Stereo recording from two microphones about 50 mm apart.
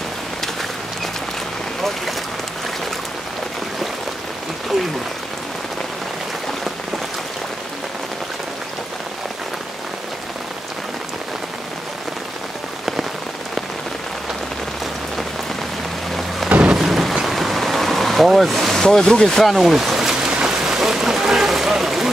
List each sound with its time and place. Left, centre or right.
16.4 s thunder: right
16.7 s boat: centre
20.2 s a sound: centre